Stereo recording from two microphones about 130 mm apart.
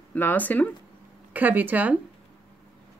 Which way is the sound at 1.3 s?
15° right (ahead or behind).